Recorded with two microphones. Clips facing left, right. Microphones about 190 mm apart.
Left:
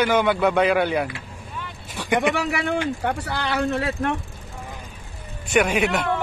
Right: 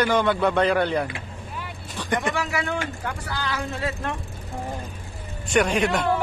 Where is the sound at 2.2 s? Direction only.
65° left (ahead or behind).